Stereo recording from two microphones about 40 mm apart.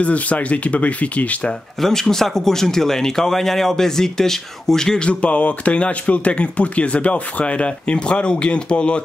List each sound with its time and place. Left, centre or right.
0.0 s speech: left
1.8 s speech: centre
4.9 s speech: left